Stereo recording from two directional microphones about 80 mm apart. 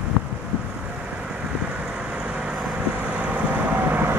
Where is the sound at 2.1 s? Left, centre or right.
Centre.